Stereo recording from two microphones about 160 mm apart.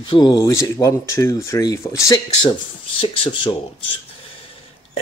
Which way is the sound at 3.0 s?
30° left (ahead or behind).